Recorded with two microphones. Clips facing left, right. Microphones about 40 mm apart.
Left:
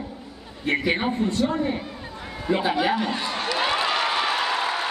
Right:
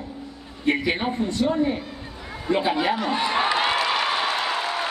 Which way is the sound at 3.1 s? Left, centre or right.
Right.